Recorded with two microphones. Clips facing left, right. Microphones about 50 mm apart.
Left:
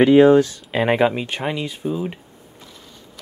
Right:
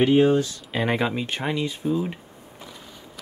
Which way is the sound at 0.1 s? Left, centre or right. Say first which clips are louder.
Left 9 dB; left.